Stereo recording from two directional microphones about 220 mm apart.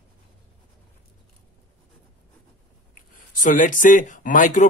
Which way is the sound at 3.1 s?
35° left (ahead or behind).